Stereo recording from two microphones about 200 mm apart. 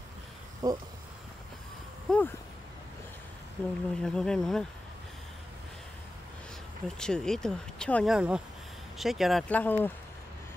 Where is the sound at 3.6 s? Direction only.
5° left (ahead or behind).